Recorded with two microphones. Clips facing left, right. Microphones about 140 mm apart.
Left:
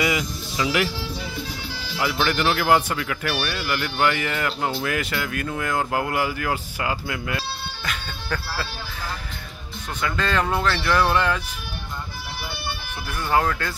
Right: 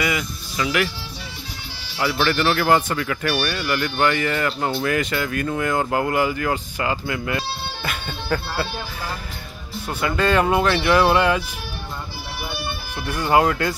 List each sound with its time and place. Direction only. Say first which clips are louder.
0.0 s speech: left 1 dB; 20° left (ahead or behind)
2.0 s speech: right 2 dB; 10° left (ahead or behind); by 8.6 s 10° right (ahead or behind)
10.0 s speech: right 5 dB; 10° right (ahead or behind)
13.1 s speech: right 4 dB; 15° right (ahead or behind)